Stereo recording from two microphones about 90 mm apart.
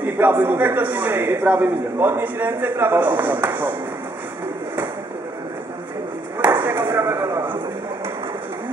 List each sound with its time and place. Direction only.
0.0 s a man's voice: 20° right (ahead or behind)
6.4 s chopping: 20° right (ahead or behind)
6.9 s a man's voice: 30° right (ahead or behind)